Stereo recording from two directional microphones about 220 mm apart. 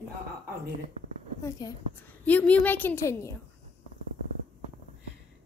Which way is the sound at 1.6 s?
20° left (ahead or behind).